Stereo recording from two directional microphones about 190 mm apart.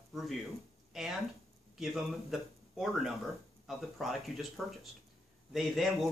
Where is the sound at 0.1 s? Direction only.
Centre (ahead or behind).